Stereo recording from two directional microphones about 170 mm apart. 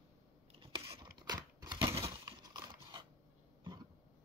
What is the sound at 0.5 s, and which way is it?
Biting, 35° right (ahead or behind).